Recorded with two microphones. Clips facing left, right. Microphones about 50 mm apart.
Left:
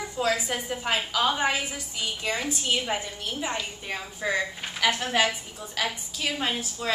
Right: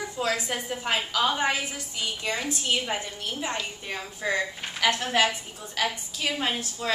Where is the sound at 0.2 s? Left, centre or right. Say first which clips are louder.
Left 2 dB; centre.